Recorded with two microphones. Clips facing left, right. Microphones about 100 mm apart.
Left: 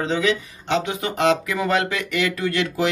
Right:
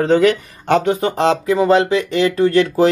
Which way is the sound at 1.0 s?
35° right (ahead or behind).